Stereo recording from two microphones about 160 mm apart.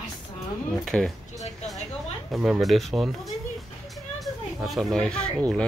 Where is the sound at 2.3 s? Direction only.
Centre (ahead or behind).